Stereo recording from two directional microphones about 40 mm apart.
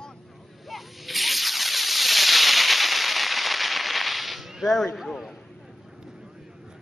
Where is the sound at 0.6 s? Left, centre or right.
Centre.